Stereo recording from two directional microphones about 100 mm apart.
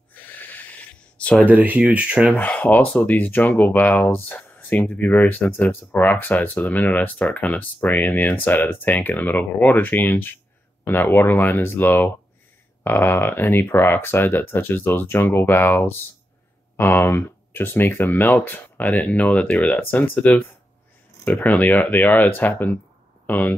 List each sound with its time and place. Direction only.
0.1 s a sound: 20° left (ahead or behind)
1.5 s speech: 15° right (ahead or behind)
2.3 s speech: 15° left (ahead or behind)